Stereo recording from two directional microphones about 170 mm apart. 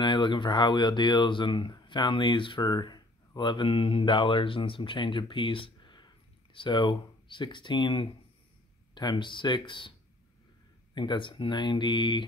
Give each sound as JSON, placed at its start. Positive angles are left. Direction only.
{"t": 0.0, "sound": "speech", "side_deg": 25}
{"t": 11.0, "sound": "speech", "side_deg": 30}